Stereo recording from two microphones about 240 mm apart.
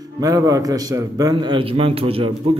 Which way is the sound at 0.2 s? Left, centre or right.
Centre.